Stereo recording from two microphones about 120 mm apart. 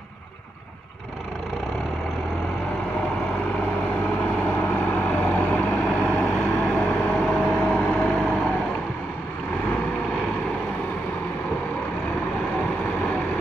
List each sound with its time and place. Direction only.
4.6 s vehicle: 20° left (ahead or behind)
7.2 s a sound: 5° left (ahead or behind)
8.0 s vehicle: 10° left (ahead or behind)